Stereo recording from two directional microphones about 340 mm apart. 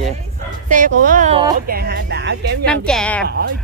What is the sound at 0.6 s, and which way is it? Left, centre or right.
Speech, right.